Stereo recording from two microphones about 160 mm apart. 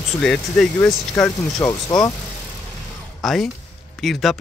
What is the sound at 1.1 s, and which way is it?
Speech, 15° left (ahead or behind).